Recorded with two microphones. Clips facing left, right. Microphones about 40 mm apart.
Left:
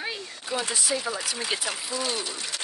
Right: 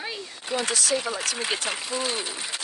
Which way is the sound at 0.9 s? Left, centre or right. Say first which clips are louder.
Right 1 dB; centre.